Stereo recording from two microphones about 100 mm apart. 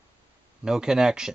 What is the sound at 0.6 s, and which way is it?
Speech, 5° right (ahead or behind).